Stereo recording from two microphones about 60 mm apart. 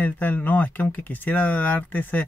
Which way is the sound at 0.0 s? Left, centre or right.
Left.